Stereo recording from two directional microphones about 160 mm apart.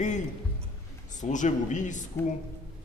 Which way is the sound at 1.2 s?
50° left (ahead or behind).